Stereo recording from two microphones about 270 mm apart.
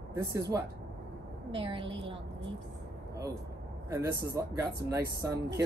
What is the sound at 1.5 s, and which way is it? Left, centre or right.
Speech, centre.